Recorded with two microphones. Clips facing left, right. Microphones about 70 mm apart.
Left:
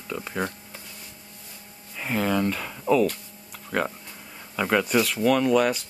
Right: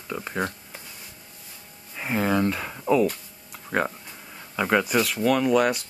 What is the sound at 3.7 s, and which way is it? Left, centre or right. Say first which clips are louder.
Speech: right 1 dB; centre.